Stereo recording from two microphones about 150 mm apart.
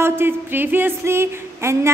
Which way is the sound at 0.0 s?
15° right (ahead or behind).